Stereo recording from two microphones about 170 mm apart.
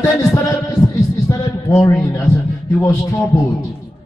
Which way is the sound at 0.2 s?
20° left (ahead or behind).